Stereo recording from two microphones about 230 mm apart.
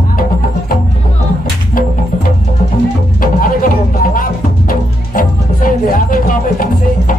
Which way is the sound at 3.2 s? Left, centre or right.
Left.